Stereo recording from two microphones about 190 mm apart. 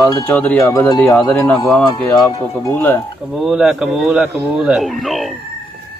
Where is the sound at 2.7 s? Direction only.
10° left (ahead or behind).